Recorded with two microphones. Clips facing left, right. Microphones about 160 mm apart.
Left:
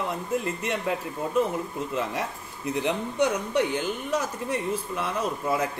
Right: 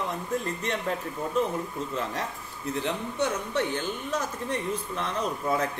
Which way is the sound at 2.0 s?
15° left (ahead or behind).